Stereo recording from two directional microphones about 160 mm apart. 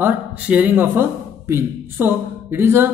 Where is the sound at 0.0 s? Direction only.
10° right (ahead or behind).